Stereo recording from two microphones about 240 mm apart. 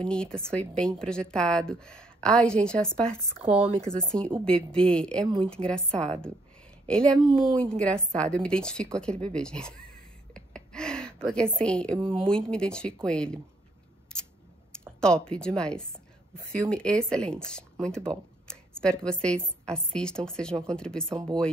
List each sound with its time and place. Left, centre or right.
0.0 s speech: centre
3.3 s speech: right
3.8 s speech: centre
10.3 s gasp: centre
11.3 s speech: centre
15.0 s speech: centre